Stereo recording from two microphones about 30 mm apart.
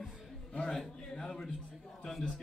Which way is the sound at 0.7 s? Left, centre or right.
Centre.